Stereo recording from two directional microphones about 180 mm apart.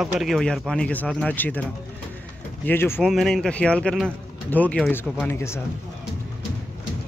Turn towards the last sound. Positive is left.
turn(degrees=15)  # may be behind; listen again after turning